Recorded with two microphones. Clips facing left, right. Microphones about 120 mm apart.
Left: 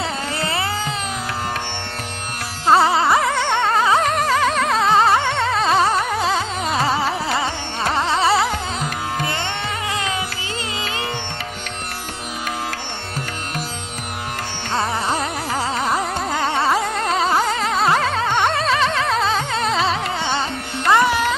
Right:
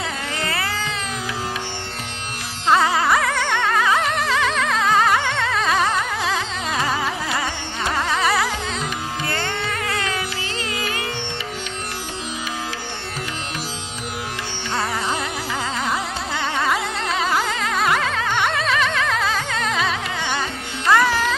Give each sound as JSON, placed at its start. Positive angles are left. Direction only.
{"t": 0.4, "sound": "music", "side_deg": 30}
{"t": 2.6, "sound": "carnatic music", "side_deg": 30}
{"t": 9.2, "sound": "music", "side_deg": 20}
{"t": 15.0, "sound": "carnatic music", "side_deg": 40}
{"t": 20.9, "sound": "music", "side_deg": 20}